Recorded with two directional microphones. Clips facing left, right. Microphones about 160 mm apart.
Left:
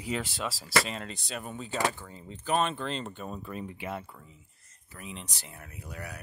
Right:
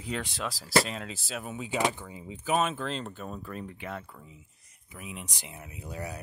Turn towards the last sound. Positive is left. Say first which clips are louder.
# right 4 dB
turn(degrees=-25)  # may be behind; listen again after turning